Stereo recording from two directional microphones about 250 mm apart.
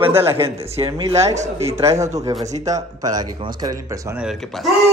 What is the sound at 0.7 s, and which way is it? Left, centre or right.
Speech, right.